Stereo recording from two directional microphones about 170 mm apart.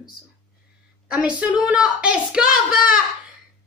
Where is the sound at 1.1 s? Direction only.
5° right (ahead or behind).